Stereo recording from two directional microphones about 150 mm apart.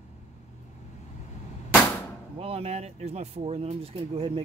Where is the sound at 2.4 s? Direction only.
40° right (ahead or behind).